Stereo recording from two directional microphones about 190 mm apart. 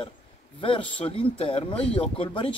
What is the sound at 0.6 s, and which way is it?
Speech, 30° left (ahead or behind).